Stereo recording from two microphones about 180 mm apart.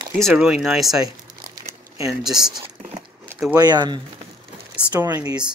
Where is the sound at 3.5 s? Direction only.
20° right (ahead or behind).